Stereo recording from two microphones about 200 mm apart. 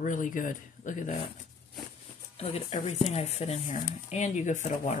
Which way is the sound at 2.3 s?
30° left (ahead or behind).